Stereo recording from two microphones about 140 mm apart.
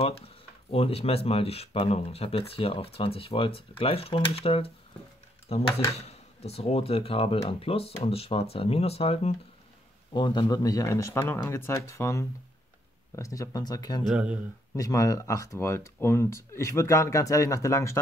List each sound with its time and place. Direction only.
0.0 s speech: 45° left (ahead or behind)
10.1 s speech: 30° left (ahead or behind)
14.1 s speech: 10° right (ahead or behind)
14.8 s speech: 25° left (ahead or behind)